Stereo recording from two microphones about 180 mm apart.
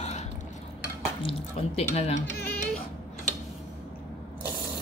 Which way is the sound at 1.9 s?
35° left (ahead or behind).